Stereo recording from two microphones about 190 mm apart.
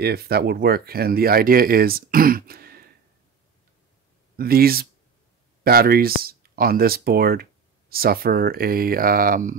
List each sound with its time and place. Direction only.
0.0 s speech: 55° right (ahead or behind)
4.4 s speech: 50° right (ahead or behind)